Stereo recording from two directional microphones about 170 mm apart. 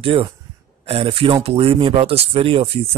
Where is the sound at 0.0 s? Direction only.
35° right (ahead or behind).